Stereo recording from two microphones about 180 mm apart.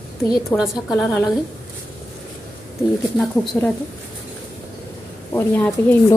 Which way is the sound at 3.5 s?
5° left (ahead or behind).